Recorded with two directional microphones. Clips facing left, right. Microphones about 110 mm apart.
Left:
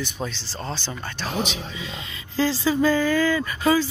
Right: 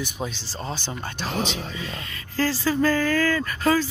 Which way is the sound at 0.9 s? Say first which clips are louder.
Right 1 dB; 20° right (ahead or behind).